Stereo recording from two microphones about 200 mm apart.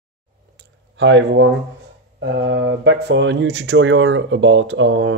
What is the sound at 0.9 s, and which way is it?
Mantra, 65° right (ahead or behind).